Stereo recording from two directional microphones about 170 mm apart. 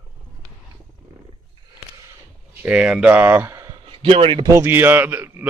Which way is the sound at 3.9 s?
30° right (ahead or behind).